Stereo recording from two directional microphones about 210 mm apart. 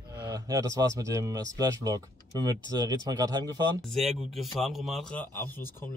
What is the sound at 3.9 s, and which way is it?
Speech, centre (ahead or behind).